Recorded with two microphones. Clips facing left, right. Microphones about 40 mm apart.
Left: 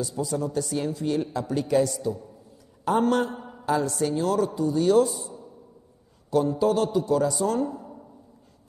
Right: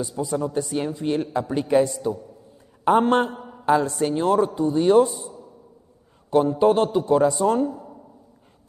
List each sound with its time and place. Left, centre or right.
0.0 s a man's voice: right
3.3 s mantra: centre
3.6 s a man's voice: right
6.3 s a man's voice: right
7.7 s a sound: centre